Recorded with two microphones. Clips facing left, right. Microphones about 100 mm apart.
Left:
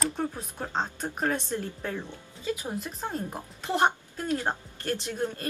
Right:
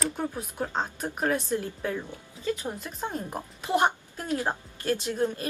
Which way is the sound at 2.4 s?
15° left (ahead or behind).